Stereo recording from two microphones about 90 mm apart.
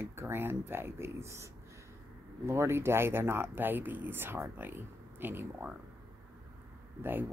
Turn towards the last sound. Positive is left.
turn(degrees=-20)  # may be behind; listen again after turning